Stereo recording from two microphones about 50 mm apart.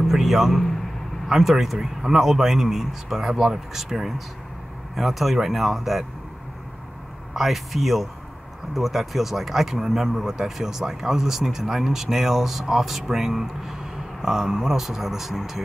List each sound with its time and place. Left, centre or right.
0.0 s a sound: centre
1.3 s speech: centre
7.3 s speech: centre